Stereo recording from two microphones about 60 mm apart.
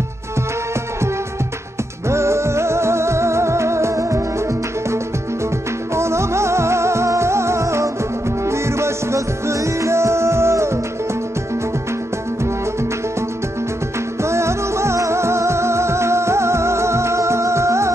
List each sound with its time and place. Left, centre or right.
2.0 s music: right
5.9 s music: right
14.2 s music: right